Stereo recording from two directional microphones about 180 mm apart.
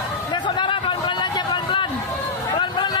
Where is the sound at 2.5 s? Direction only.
25° left (ahead or behind).